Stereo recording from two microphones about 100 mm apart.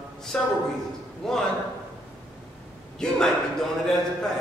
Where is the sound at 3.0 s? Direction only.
5° left (ahead or behind).